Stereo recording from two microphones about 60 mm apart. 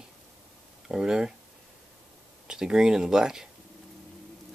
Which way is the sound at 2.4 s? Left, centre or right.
Centre.